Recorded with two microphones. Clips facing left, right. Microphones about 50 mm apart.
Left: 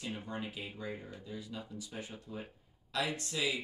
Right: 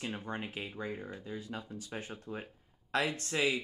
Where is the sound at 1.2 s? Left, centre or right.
Right.